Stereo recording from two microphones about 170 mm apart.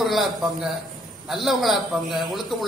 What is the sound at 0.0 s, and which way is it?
Speech, centre (ahead or behind).